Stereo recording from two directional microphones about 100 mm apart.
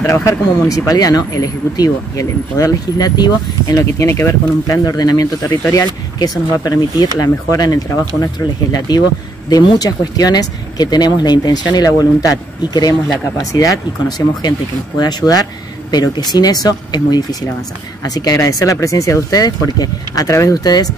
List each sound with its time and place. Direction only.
0.0 s speech: 35° left (ahead or behind)
4.8 s speech: 40° left (ahead or behind)